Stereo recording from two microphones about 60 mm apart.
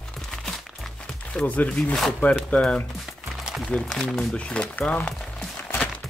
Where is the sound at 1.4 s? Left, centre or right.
Left.